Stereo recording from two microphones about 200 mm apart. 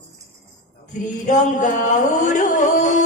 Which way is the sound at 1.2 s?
40° left (ahead or behind).